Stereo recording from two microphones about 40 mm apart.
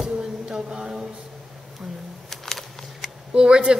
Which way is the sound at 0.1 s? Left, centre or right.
Centre.